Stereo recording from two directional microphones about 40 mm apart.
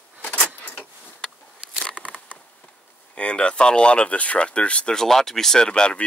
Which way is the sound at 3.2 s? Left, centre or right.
Left.